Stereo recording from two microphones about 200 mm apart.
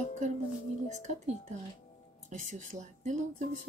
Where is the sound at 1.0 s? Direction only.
35° right (ahead or behind).